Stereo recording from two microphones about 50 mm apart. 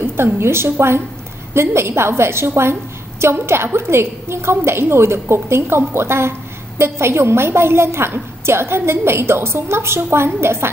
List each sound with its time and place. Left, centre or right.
0.0 s a woman's voice: right